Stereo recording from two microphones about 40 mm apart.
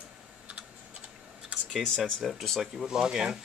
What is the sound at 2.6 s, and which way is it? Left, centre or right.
Speech, centre.